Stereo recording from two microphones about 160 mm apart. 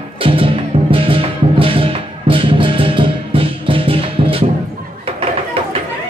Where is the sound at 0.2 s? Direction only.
35° right (ahead or behind).